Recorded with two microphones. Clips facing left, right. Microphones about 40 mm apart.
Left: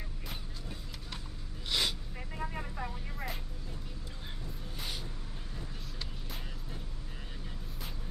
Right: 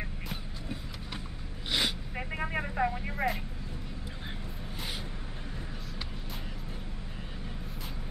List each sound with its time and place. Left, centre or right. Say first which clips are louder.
1.7 s gasp: right 2 dB; centre
2.1 s vehicle: right 6 dB; right